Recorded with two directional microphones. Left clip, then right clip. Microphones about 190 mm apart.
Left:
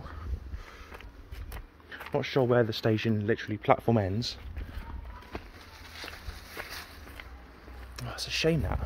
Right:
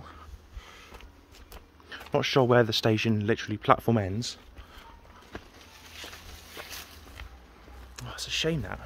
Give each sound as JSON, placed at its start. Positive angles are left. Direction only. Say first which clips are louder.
{"t": 2.1, "sound": "speech", "louder": "right 3 dB", "side_deg": -40}
{"t": 3.9, "sound": "speech", "louder": "even", "side_deg": -10}
{"t": 6.5, "sound": "a sound", "louder": "left 1 dB", "side_deg": 5}